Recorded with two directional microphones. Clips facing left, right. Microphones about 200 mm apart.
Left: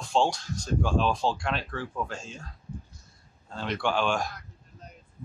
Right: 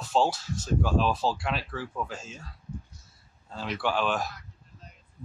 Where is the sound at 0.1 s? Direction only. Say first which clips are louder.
Even; 5° right (ahead or behind).